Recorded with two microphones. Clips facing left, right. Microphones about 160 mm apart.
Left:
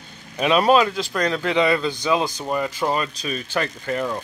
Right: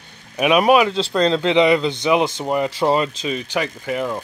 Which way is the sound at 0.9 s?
25° right (ahead or behind).